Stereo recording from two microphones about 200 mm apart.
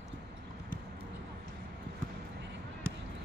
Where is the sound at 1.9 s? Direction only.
60° right (ahead or behind).